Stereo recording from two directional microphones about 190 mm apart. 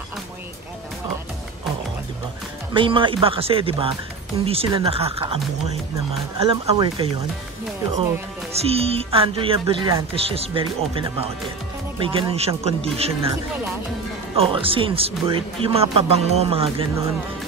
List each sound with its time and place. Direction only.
2.7 s speech: 25° right (ahead or behind)
6.4 s speech: 25° right (ahead or behind)
8.5 s speech: 30° right (ahead or behind)
10.1 s speech: 30° right (ahead or behind)
14.3 s speech: 30° right (ahead or behind)